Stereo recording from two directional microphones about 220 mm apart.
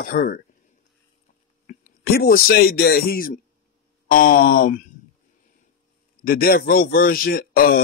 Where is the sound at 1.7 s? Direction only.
40° left (ahead or behind).